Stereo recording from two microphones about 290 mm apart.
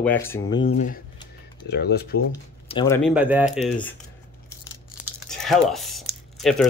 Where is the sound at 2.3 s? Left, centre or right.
Centre.